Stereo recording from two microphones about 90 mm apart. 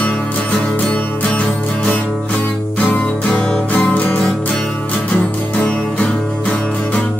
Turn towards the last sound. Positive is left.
turn(degrees=10)  # may be behind; listen again after turning